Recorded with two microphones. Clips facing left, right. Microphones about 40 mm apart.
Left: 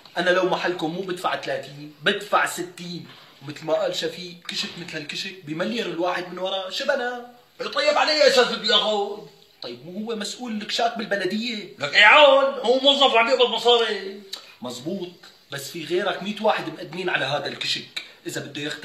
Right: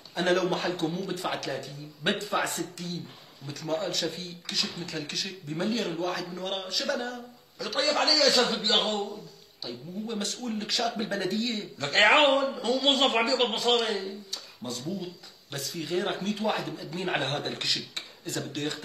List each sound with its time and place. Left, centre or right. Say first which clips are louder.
0.1 s speech: left 5 dB; left